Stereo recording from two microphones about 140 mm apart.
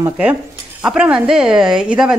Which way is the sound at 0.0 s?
10° right (ahead or behind).